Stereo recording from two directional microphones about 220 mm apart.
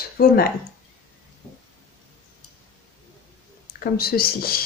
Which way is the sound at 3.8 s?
45° left (ahead or behind).